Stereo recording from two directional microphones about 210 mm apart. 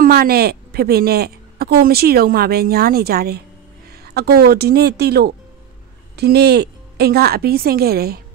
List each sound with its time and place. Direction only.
0.0 s a woman's voice: 45° right (ahead or behind)